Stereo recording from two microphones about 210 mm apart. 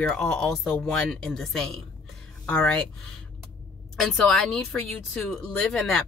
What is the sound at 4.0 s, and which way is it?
A woman's voice, centre (ahead or behind).